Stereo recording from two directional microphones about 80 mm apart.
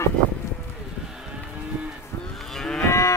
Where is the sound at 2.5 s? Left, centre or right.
Centre.